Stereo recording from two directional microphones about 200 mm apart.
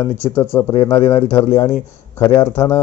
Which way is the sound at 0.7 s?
30° left (ahead or behind).